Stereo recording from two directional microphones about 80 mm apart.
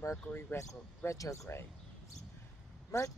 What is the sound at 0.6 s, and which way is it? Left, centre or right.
Speech, left.